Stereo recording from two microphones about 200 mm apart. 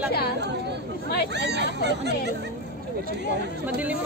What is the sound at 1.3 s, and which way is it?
Speech, 60° right (ahead or behind).